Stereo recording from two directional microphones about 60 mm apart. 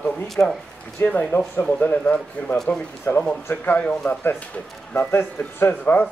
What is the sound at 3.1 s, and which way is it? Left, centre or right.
Speech, left.